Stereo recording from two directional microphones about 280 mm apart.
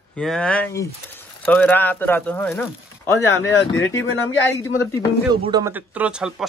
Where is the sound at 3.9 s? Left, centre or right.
Centre.